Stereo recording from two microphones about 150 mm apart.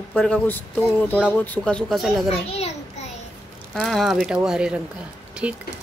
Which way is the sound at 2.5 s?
45° left (ahead or behind).